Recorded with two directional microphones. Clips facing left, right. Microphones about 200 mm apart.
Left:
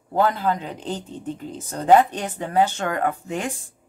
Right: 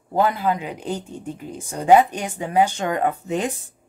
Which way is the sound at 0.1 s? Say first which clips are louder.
Right 1 dB; 10° right (ahead or behind).